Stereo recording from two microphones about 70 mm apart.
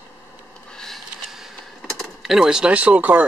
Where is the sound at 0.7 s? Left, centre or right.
Centre.